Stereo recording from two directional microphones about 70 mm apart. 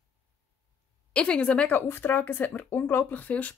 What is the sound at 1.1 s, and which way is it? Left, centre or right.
Speech, centre.